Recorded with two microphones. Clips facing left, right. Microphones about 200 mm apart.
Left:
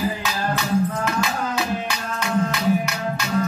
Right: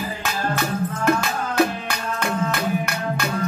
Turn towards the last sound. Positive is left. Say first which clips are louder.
# right 1 dB
turn(degrees=-55)  # may be behind; listen again after turning